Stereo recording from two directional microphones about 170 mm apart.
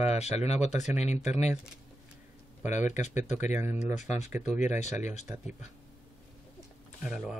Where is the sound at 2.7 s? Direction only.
45° left (ahead or behind).